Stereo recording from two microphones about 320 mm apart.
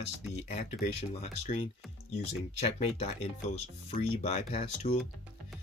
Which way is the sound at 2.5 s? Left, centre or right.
Centre.